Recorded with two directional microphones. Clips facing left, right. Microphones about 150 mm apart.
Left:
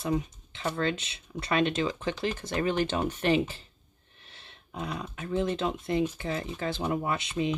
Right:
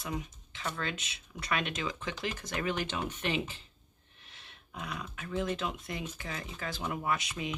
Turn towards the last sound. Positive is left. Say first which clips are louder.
# left 5 dB
turn(degrees=25)  # may be behind; listen again after turning